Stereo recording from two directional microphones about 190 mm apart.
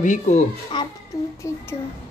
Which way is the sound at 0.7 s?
25° left (ahead or behind).